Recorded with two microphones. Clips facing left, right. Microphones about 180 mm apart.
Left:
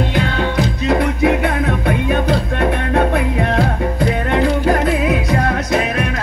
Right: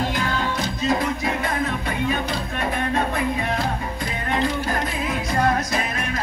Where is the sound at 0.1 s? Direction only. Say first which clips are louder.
Left 7 dB; 65° left (ahead or behind).